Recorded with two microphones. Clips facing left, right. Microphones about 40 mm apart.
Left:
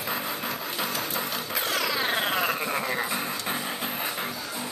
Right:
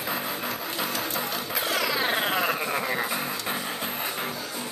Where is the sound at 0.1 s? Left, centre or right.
Centre.